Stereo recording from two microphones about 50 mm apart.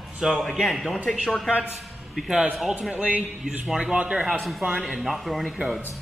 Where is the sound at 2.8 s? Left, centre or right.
Right.